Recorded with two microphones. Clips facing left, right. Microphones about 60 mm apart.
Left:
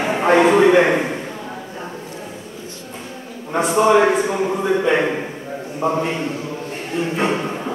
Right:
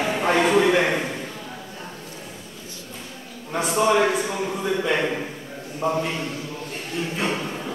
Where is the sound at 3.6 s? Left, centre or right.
Centre.